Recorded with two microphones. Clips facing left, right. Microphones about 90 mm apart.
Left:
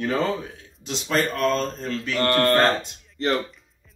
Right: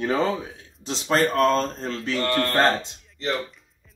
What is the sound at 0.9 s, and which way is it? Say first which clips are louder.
Speech: right 2 dB; 35° right (ahead or behind).